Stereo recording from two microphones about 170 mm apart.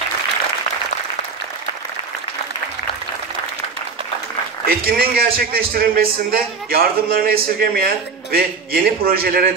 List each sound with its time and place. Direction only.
4.6 s a man's voice: 60° right (ahead or behind)